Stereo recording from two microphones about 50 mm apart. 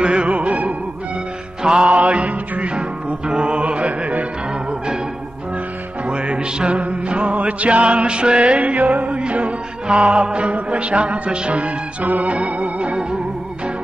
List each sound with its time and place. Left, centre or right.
0.0 s music: right
6.0 s music: right